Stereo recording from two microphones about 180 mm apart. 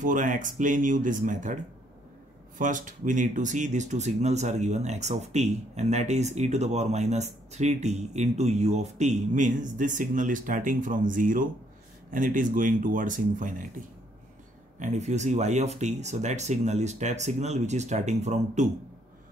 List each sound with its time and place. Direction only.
0.0 s speech: 45° right (ahead or behind)
2.6 s speech: 45° right (ahead or behind)